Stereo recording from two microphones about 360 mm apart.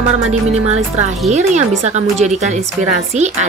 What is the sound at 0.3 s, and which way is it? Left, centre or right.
Music, centre.